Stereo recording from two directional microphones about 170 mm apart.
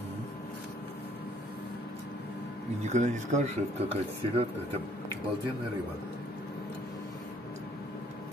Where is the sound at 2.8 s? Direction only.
45° right (ahead or behind).